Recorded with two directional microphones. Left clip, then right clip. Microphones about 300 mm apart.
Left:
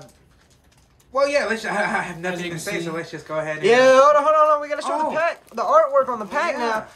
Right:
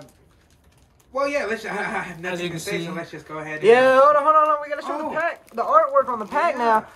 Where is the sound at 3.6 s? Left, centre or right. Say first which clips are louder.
Even; centre.